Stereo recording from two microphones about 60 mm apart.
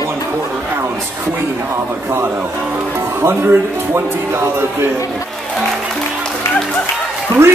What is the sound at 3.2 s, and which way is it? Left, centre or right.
Speech, right.